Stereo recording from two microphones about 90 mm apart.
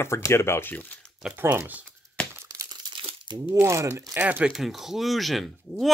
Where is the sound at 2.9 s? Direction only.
90° right.